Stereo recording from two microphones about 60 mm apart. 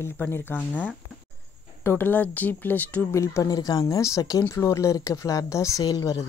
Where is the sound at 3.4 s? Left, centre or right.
Left.